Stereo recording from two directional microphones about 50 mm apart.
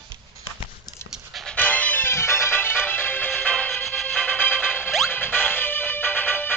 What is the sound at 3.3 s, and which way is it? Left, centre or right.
Music, left.